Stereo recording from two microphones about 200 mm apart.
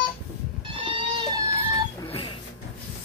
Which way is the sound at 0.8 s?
20° right (ahead or behind).